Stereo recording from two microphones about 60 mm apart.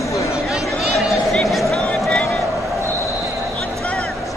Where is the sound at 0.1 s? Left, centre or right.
Left.